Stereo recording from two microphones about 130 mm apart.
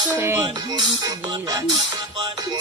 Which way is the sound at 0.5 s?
35° right (ahead or behind).